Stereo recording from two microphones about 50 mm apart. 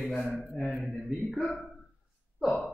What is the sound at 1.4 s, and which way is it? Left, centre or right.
Speech, centre.